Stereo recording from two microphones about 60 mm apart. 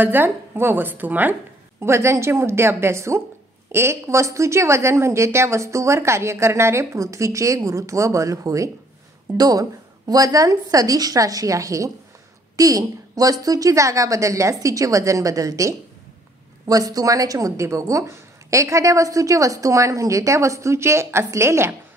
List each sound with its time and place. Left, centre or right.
0.0 s a woman's voice: right
1.8 s a woman's voice: right
9.4 s a woman's voice: right
12.5 s a woman's voice: right
16.6 s a woman's voice: right